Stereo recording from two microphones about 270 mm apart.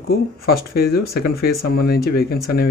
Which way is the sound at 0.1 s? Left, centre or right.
Left.